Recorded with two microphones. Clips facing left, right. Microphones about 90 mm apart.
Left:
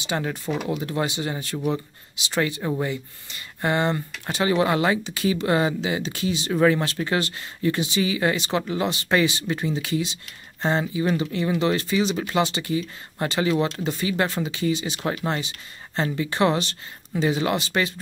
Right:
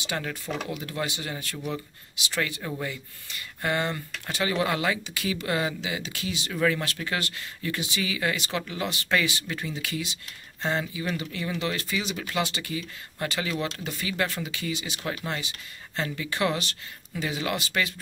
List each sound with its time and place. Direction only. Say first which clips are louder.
0.0 s speech: left 5 dB; 25° left (ahead or behind)